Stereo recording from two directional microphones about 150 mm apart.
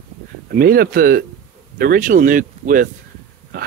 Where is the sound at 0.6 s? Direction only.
80° right; by 2.9 s 65° right (ahead or behind).